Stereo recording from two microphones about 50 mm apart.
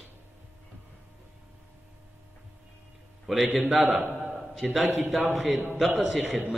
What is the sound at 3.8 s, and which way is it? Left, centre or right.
Speech, right.